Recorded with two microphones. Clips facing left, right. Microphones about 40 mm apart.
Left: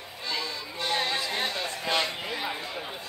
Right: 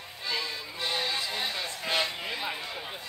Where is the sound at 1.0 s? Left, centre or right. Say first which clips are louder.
Left 2 dB; left.